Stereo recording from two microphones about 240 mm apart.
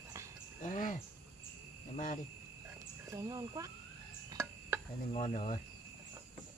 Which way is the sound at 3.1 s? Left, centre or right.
Centre.